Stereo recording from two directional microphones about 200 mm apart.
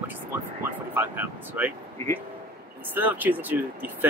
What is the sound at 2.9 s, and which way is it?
Speech, 10° right (ahead or behind).